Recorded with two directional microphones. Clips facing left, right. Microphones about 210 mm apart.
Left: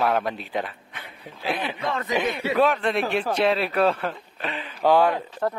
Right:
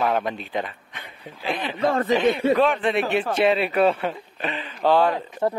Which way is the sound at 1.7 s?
45° right (ahead or behind).